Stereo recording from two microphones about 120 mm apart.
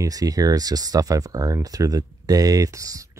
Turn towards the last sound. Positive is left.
turn(degrees=-30)  # may be behind; listen again after turning